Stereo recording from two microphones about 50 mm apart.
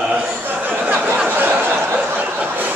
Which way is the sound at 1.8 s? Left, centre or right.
Right.